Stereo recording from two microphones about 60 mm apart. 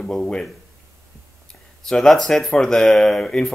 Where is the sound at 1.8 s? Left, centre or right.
Centre.